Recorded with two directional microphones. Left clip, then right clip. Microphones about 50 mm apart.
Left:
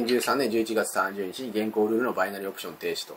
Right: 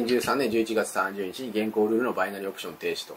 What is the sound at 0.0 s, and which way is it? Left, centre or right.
Speech, centre.